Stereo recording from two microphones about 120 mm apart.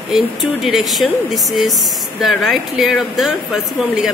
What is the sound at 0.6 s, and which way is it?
Speech, centre (ahead or behind).